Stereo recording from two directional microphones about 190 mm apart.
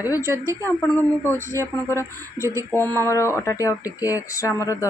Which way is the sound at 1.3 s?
15° left (ahead or behind).